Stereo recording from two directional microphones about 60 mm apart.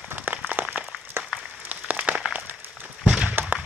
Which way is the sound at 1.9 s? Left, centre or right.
Right.